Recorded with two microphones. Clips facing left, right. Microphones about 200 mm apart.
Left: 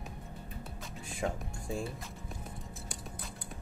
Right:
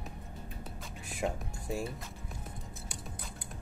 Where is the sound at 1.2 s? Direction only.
5° right (ahead or behind).